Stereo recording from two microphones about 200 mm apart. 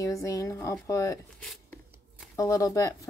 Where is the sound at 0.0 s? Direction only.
15° left (ahead or behind).